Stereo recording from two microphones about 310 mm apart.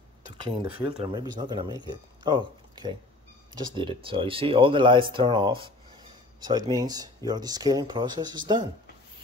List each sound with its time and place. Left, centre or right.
0.4 s speech: centre